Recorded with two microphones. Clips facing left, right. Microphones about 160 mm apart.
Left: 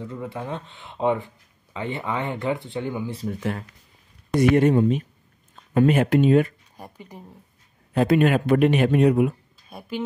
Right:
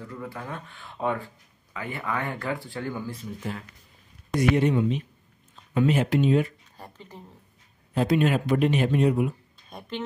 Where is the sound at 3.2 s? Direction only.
75° left (ahead or behind).